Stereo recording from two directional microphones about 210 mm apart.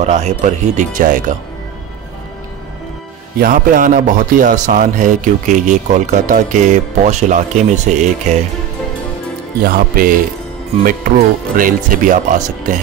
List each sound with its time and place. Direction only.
0.0 s a man's voice: 35° right (ahead or behind)
3.3 s a man's voice: 40° right (ahead or behind)
10.8 s a man's voice: 40° right (ahead or behind)